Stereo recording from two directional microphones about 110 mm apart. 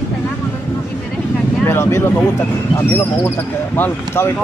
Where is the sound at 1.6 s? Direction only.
20° left (ahead or behind).